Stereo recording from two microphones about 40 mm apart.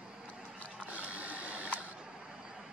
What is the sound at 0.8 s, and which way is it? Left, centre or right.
Sewing machine, right.